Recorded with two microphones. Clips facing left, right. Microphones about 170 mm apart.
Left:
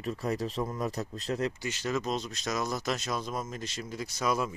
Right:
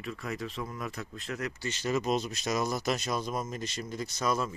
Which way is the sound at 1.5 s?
10° left (ahead or behind).